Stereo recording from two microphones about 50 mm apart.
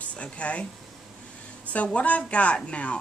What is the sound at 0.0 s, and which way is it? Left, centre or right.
Speech, left.